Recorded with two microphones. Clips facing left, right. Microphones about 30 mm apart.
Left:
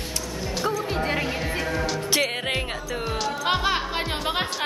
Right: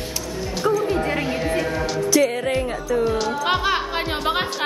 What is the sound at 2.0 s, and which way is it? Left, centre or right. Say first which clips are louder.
Music: right 6 dB; left.